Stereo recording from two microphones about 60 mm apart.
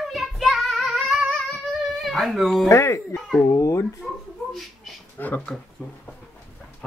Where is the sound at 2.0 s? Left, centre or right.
Centre.